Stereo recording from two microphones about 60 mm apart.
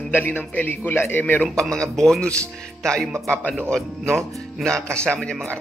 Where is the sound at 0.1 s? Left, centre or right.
Left.